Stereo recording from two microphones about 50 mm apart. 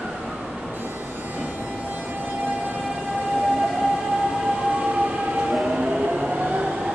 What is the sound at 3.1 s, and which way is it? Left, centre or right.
Train, centre.